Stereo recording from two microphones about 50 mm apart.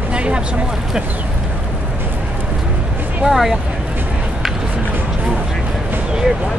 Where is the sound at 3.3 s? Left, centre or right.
Centre.